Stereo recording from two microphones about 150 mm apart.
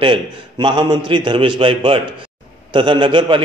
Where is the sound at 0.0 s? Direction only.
35° right (ahead or behind).